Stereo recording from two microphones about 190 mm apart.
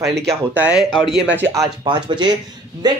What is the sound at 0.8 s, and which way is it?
Speech, 25° left (ahead or behind).